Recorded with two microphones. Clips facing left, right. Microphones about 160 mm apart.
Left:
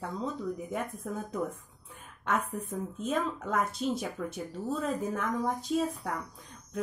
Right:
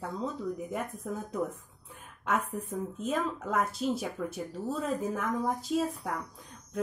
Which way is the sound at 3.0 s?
5° right (ahead or behind).